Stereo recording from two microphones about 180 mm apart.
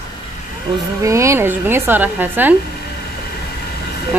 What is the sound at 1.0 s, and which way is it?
Speech, 15° right (ahead or behind).